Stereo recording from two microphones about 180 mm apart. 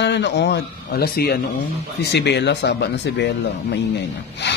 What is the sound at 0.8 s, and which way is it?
A man's voice, 60° left (ahead or behind).